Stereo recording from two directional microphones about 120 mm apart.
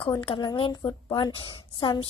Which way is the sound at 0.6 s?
40° left (ahead or behind).